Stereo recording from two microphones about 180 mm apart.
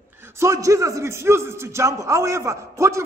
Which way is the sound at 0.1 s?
15° right (ahead or behind).